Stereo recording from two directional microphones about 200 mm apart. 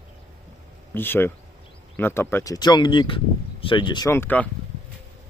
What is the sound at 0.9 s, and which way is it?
Speech, 10° left (ahead or behind).